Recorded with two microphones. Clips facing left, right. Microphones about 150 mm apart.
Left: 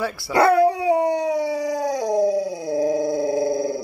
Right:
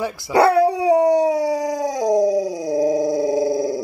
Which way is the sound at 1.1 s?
40° right (ahead or behind).